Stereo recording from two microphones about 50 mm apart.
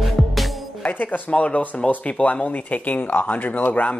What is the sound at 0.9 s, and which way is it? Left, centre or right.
Speech, left.